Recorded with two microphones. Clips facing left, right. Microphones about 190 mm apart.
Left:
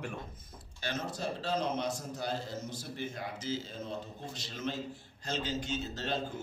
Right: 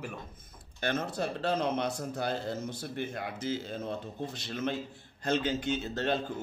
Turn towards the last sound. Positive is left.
turn(degrees=-60)  # may be behind; listen again after turning